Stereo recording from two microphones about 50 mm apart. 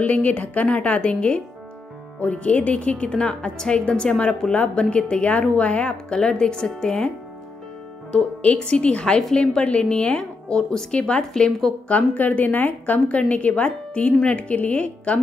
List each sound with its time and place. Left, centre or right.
0.0 s a woman's voice: left; by 7.1 s centre
8.4 s a woman's voice: left
11.9 s a woman's voice: left